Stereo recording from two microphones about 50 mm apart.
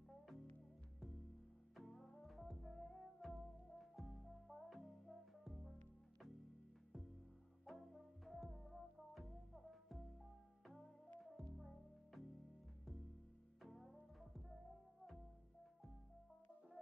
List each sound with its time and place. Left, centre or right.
1.8 s music: centre
7.6 s music: centre
11.1 s music: centre
13.6 s music: centre